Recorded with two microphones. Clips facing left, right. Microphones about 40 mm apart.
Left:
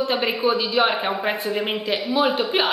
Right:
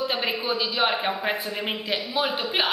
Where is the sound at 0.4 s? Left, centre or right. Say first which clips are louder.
Left 7 dB; centre.